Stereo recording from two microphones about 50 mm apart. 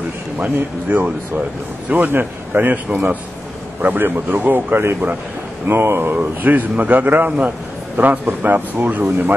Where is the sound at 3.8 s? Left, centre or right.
Right.